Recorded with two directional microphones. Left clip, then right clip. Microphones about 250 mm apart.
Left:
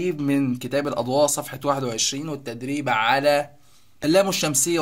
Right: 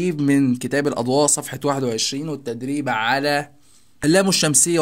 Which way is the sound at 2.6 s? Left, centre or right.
Right.